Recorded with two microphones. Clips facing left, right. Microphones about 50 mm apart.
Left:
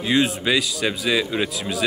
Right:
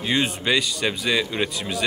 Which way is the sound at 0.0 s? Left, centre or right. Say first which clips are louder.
Left 3 dB; centre.